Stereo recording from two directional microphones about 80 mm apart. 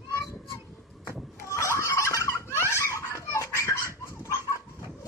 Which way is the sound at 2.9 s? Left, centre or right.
Left.